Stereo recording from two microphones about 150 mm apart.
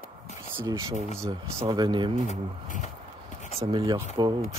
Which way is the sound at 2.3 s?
55° left (ahead or behind).